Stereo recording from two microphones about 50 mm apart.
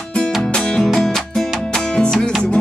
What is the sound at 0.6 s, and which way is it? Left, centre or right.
Music, centre.